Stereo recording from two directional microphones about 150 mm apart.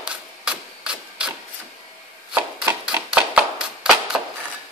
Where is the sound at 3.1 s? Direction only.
10° right (ahead or behind).